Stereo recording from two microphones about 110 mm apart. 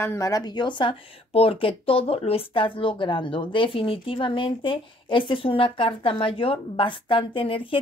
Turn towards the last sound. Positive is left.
turn(degrees=55)  # may be behind; listen again after turning